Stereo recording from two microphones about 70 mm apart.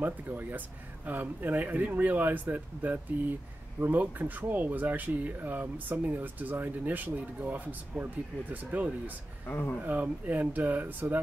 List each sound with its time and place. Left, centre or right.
0.0 s speech: right
9.5 s speech: left
9.8 s speech: right